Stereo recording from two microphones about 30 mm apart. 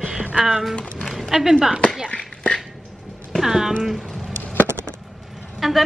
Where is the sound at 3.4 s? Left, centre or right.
Centre.